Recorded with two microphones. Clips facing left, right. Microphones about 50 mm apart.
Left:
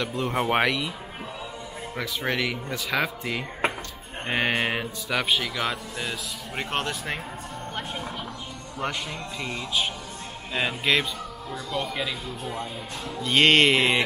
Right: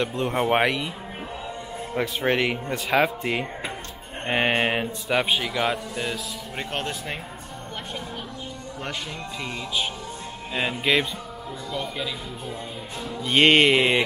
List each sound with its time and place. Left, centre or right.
0.0 s speech: right
0.3 s speech: centre
2.0 s speech: right
4.5 s speech: right; by 6.1 s centre
9.4 s speech: centre
11.7 s speech: centre
13.0 s speech: centre